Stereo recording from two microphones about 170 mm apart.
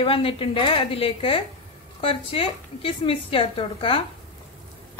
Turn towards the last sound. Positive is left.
turn(degrees=30)  # may be behind; listen again after turning